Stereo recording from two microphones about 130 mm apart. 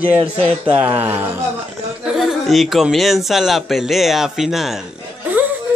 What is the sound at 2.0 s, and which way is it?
Speech, centre (ahead or behind).